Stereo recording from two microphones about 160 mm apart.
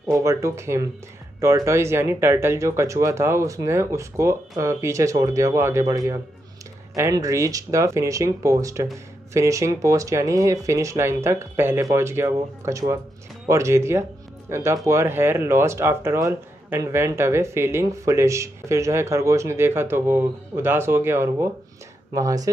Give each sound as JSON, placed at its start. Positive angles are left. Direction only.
{"t": 0.1, "sound": "speech", "side_deg": -20}